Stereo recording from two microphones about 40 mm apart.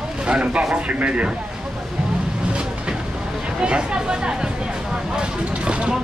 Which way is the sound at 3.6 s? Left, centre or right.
Right.